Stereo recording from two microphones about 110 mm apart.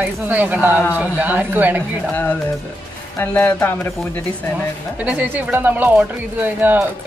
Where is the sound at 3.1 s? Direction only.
20° left (ahead or behind).